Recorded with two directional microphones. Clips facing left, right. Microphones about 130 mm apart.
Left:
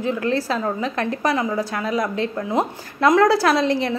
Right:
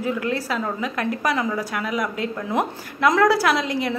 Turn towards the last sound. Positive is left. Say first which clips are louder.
# left 3 dB
turn(degrees=30)  # may be behind; listen again after turning